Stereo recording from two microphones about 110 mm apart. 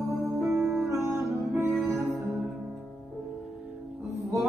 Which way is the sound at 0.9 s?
25° right (ahead or behind).